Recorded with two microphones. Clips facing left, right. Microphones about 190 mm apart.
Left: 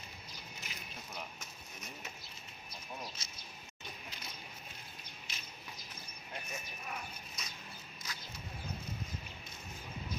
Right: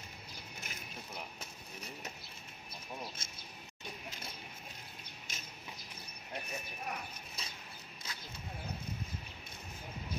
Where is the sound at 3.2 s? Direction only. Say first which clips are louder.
Right 2 dB; 50° right (ahead or behind).